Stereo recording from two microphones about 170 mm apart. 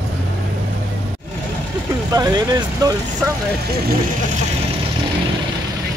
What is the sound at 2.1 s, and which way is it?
Speech, 20° right (ahead or behind).